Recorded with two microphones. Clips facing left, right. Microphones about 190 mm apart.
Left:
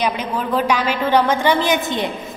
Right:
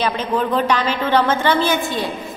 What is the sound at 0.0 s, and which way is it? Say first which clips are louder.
A woman's voice: right 2 dB; 10° left (ahead or behind).